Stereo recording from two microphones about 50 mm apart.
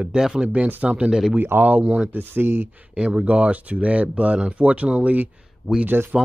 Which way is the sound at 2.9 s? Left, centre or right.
Right.